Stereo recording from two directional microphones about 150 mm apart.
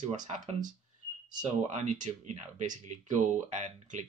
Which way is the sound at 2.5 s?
55° right (ahead or behind).